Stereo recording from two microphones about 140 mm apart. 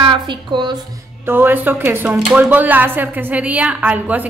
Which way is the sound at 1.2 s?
15° right (ahead or behind).